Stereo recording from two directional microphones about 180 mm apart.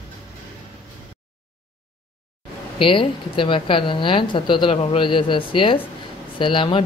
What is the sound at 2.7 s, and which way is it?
A woman's voice, 30° left (ahead or behind).